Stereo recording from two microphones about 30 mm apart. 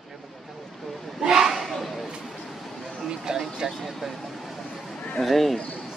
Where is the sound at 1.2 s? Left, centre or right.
Right.